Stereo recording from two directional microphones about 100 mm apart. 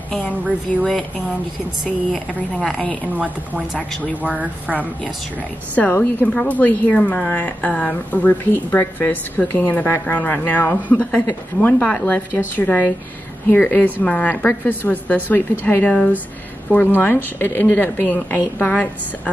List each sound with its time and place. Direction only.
0.3 s a woman's voice: 15° right (ahead or behind)
2.6 s a woman's voice: 10° left (ahead or behind)
3.1 s a woman's voice: 10° right (ahead or behind)
5.8 s a woman's voice: 15° left (ahead or behind)